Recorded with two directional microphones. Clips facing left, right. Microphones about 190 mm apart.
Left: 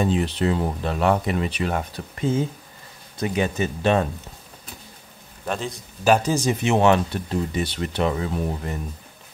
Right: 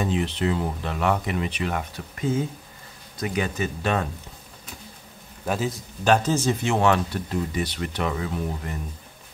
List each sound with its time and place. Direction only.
0.1 s speech: 40° left (ahead or behind)
5.4 s a man's voice: 5° right (ahead or behind)
6.0 s speech: 10° left (ahead or behind); by 8.7 s 30° left (ahead or behind)